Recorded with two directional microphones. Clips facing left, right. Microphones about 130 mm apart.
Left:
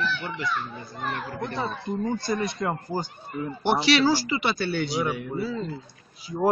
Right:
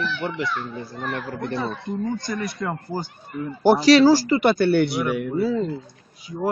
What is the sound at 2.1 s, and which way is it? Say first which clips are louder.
Speech: left 1 dB; 25° left (ahead or behind).